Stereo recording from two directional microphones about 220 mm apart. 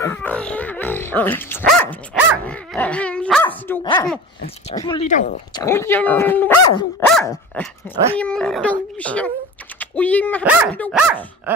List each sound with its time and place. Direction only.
0.0 s speech: 10° left (ahead or behind)
3.8 s speech: 20° left (ahead or behind)
5.0 s speech: 35° left (ahead or behind)
5.5 s speech: 15° left (ahead or behind)
7.0 s dog: 5° left (ahead or behind)
8.2 s speech: 5° left (ahead or behind)
10.4 s speech: 5° right (ahead or behind)
10.7 s speech: 5° left (ahead or behind)
11.5 s speech: 5° right (ahead or behind)